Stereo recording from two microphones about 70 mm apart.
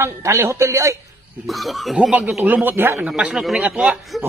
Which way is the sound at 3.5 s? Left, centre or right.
Centre.